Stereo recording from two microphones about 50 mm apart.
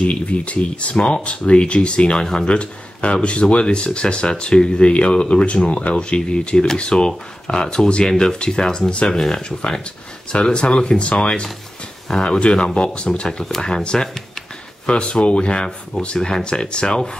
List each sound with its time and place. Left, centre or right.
0.0 s speech: left
2.5 s speech: left